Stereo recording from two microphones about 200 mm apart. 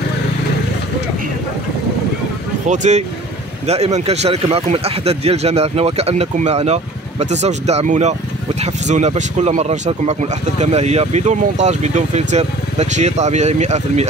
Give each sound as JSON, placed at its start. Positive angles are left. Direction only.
{"t": 2.6, "sound": "speech", "side_deg": -35}